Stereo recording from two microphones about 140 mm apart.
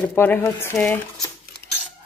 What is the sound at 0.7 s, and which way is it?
Speech, 5° left (ahead or behind).